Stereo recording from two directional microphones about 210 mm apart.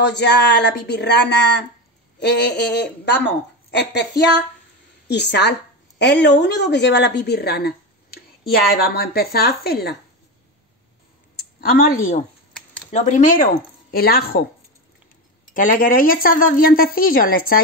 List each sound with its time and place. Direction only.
0.0 s a woman's voice: 55° left (ahead or behind)
11.3 s a woman's voice: 45° left (ahead or behind)
15.5 s a woman's voice: 40° left (ahead or behind)